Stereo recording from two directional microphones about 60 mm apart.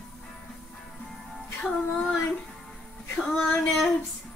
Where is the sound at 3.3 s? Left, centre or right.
Centre.